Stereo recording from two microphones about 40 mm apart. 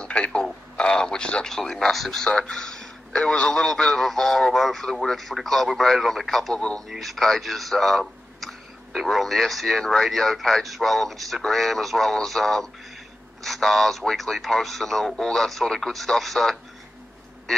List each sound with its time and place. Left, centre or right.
0.0 s speech: left
1.5 s a man's voice: centre
6.5 s speech: left
6.9 s a man's voice: centre